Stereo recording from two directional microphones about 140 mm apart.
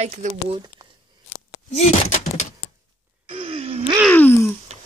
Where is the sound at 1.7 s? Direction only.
55° left (ahead or behind).